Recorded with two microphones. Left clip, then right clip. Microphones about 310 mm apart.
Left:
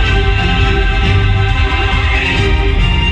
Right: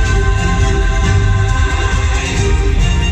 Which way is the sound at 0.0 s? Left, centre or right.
Right.